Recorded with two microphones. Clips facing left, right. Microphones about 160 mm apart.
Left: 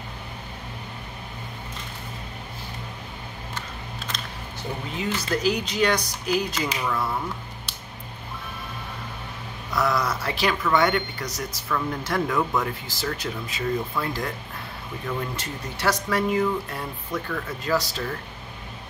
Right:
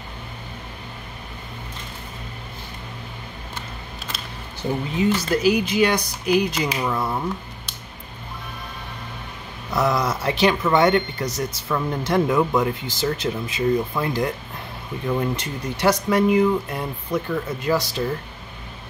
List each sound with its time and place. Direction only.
5.3 s speech: 10° right (ahead or behind)
6.8 s speech: 25° right (ahead or behind)
9.8 s speech: 20° right (ahead or behind)